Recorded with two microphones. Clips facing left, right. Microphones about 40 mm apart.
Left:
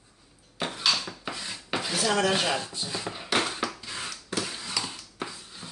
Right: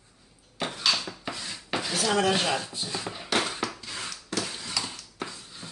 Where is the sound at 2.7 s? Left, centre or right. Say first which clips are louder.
Even; centre.